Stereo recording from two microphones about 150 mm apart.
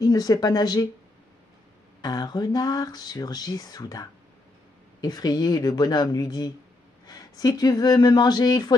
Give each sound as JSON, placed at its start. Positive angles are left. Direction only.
{"t": 0.0, "sound": "speech", "side_deg": 25}
{"t": 2.0, "sound": "speech", "side_deg": 25}